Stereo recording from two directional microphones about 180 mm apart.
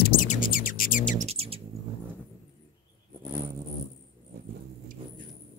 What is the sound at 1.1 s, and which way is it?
Bird, 35° right (ahead or behind).